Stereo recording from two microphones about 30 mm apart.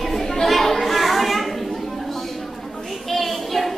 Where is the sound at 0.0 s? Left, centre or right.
Centre.